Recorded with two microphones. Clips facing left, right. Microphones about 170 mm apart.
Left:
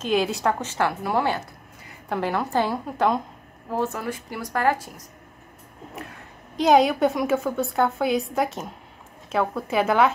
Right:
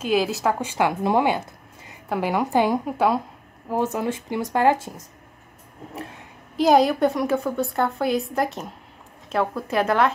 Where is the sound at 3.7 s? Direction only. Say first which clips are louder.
Right 3 dB; 20° right (ahead or behind).